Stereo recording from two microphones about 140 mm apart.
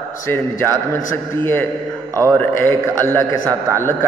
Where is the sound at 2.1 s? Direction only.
20° right (ahead or behind).